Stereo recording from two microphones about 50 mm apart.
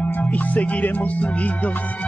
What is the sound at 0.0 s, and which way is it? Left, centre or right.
Music, left.